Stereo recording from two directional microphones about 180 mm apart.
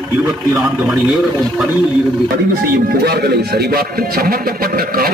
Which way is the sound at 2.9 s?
60° right (ahead or behind).